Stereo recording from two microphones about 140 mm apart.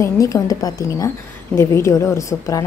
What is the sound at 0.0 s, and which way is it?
A woman's voice, 25° left (ahead or behind).